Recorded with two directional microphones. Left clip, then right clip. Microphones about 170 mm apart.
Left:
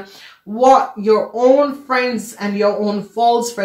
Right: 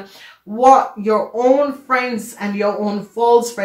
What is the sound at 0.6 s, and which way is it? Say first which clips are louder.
Speech: even; 25° left (ahead or behind).